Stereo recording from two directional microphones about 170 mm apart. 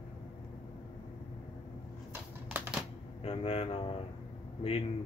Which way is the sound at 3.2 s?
35° left (ahead or behind).